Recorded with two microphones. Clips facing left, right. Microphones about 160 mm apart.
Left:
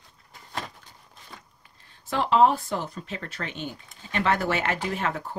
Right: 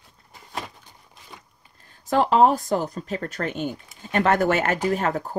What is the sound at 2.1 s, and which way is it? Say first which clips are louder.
Speech: right 3 dB; 45° right (ahead or behind).